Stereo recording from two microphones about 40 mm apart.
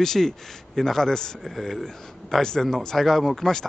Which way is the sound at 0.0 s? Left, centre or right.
Centre.